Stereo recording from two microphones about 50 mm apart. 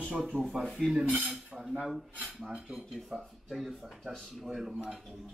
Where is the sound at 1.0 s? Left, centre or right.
Right.